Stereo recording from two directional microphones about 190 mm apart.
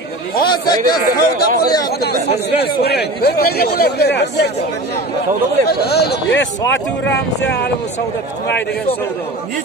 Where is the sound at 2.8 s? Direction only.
60° left (ahead or behind).